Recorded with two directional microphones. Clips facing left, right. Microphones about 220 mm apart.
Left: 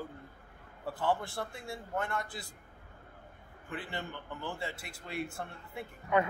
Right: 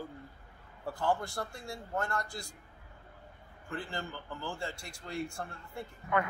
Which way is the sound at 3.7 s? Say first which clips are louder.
Right 1 dB; 5° left (ahead or behind).